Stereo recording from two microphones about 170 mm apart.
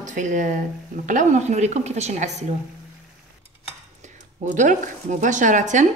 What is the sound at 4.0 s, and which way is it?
A woman's voice, 45° right (ahead or behind).